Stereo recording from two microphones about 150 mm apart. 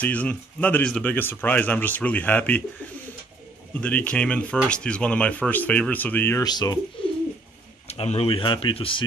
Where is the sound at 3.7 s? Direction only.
10° left (ahead or behind).